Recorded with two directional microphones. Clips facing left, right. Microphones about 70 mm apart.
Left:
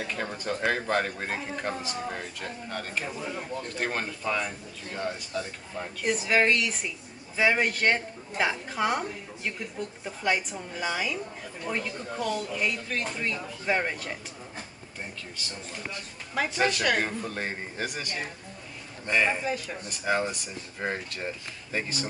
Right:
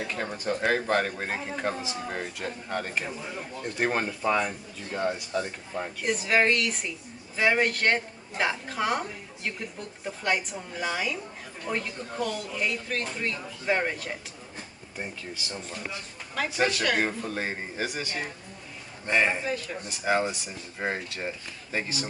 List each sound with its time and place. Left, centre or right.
0.0 s speech: centre
6.0 s speech: centre
15.0 s speech: centre
16.4 s speech: centre